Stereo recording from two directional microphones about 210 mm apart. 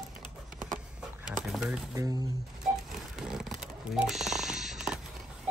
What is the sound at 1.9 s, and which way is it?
Speech, 15° right (ahead or behind).